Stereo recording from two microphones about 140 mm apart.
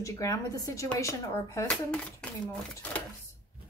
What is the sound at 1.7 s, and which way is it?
Speech, 5° left (ahead or behind).